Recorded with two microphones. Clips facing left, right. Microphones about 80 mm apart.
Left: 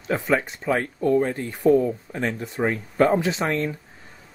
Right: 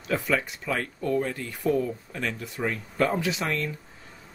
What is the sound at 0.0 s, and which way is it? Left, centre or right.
Speech, left.